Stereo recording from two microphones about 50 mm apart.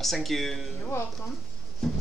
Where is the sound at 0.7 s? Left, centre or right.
Left.